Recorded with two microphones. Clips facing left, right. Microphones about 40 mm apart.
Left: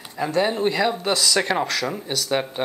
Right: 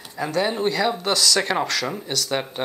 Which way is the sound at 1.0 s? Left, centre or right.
Centre.